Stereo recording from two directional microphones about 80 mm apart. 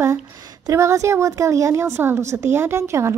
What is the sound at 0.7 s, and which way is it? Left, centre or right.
A woman's voice, right.